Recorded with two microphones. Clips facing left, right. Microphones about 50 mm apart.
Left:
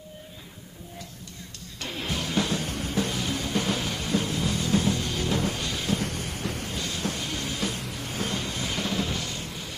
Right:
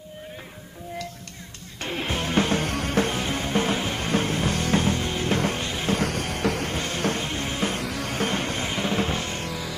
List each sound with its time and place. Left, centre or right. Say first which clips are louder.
1.8 s music: right 4 dB; right
2.6 s music: right 5 dB; right
3.1 s music: right 3 dB; right
5.3 s music: right 4 dB; right
5.6 s music: right 3 dB; right
5.9 s music: right 6 dB; right
6.7 s music: right 5 dB; right
7.2 s music: right 4 dB; right
7.8 s music: right 6 dB; right
8.2 s music: right 4 dB; right
8.6 s music: right 2 dB; right